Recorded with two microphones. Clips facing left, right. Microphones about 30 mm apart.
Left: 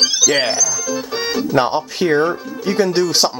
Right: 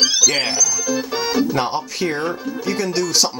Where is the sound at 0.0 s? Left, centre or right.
Centre.